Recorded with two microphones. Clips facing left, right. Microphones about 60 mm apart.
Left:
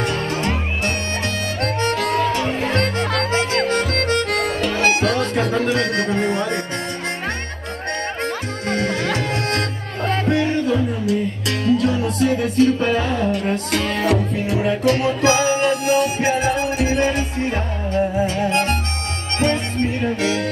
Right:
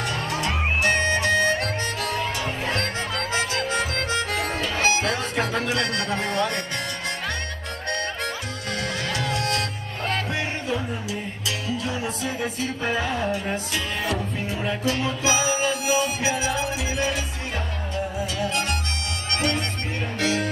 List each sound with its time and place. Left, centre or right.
0.0 s music: left
8.6 s music: left